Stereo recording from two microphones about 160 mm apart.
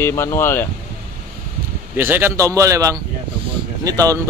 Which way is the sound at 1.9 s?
10° right (ahead or behind).